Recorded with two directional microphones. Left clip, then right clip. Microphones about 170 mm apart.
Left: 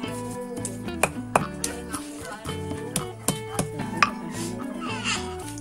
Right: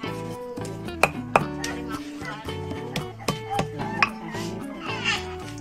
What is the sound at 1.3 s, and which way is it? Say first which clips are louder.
Music: right 2 dB; centre (ahead or behind).